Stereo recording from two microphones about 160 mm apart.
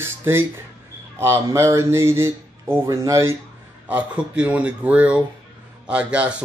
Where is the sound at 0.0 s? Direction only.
15° right (ahead or behind).